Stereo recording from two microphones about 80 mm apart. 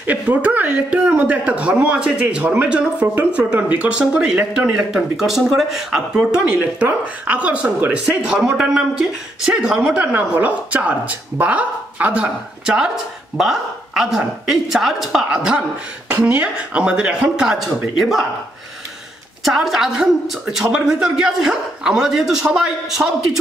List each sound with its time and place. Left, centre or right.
0.0 s speech: centre
6.6 s speech: centre
19.4 s a woman's voice: centre